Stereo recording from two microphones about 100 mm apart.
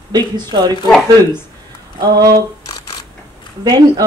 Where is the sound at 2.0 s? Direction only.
40° right (ahead or behind).